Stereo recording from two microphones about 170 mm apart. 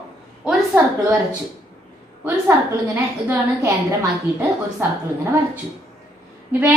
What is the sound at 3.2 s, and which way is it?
Speech, 15° right (ahead or behind).